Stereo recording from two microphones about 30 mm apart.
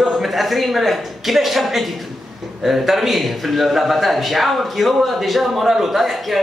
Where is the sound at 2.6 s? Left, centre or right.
Centre.